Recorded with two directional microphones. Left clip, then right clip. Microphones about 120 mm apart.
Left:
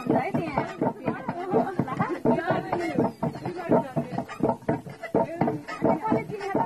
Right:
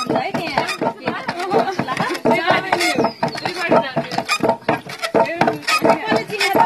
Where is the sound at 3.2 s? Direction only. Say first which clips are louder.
Right 11 dB; 20° right (ahead or behind).